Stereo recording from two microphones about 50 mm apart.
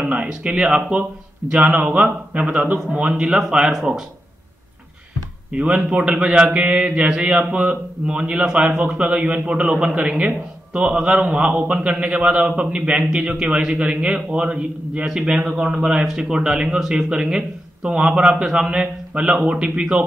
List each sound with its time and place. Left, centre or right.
0.0 s speech: right
0.3 s a man's voice: centre
5.5 s a man's voice: right
15.0 s a man's voice: centre